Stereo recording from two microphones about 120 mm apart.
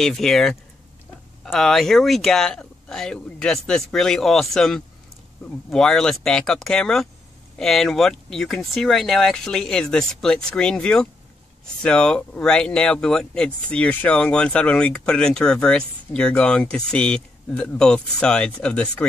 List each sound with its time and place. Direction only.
0.0 s speech: 5° left (ahead or behind)